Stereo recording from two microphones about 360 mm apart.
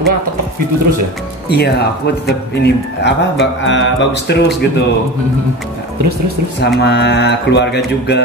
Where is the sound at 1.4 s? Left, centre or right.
Left.